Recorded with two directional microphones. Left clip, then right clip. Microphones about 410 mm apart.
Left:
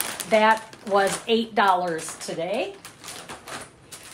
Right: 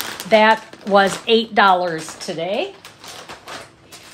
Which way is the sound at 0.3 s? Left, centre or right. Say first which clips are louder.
Right 6 dB; right.